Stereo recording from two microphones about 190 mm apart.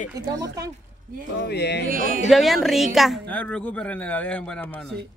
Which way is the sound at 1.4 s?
60° left (ahead or behind).